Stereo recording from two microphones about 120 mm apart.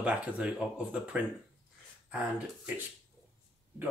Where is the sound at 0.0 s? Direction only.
10° right (ahead or behind).